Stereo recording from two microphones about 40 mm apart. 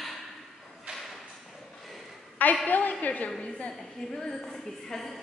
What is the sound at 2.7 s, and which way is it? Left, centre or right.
A woman's voice, left.